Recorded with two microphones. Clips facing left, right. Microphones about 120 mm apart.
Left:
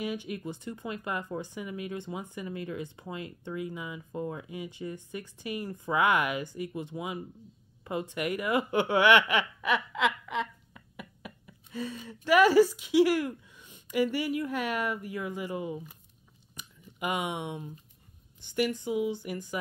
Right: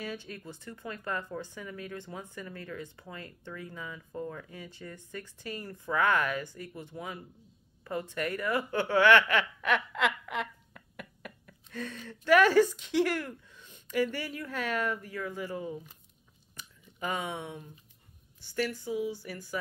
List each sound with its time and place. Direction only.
0.0 s speech: 15° left (ahead or behind)
16.5 s a sound: 15° left (ahead or behind)
18.4 s a woman's voice: 20° left (ahead or behind)